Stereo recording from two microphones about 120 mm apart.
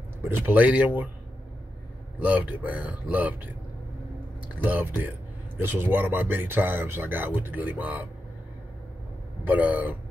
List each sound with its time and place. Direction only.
0.2 s speech: 15° right (ahead or behind)
2.1 s speech: 10° right (ahead or behind)
4.6 s speech: 15° right (ahead or behind)
9.5 s speech: 15° right (ahead or behind)